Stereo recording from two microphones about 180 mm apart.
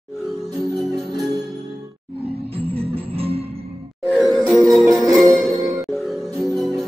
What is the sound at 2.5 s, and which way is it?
Music, 35° right (ahead or behind).